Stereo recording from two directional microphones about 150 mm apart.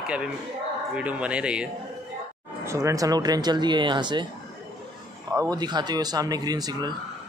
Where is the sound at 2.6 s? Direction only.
20° right (ahead or behind).